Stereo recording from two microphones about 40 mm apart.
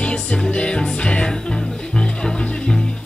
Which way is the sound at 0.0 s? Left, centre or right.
Left.